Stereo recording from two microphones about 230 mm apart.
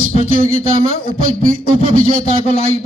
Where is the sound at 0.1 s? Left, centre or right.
Left.